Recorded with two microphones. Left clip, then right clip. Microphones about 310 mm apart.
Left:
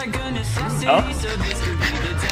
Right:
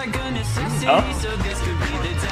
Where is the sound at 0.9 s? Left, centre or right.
Centre.